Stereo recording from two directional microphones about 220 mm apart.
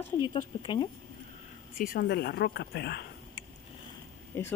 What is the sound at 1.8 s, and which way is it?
Speech, 40° left (ahead or behind).